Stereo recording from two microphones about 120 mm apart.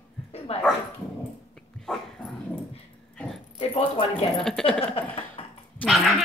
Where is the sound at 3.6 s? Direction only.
50° left (ahead or behind).